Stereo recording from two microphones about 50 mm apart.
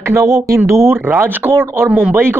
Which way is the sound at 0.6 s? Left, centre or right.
Right.